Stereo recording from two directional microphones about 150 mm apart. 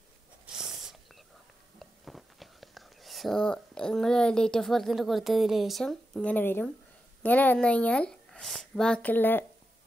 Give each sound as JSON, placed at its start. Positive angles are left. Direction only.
{"t": 0.5, "sound": "snort", "side_deg": -5}
{"t": 2.0, "sound": "speech", "side_deg": 0}